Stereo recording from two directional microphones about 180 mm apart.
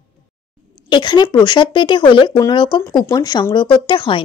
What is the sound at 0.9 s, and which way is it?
Speech, 25° left (ahead or behind).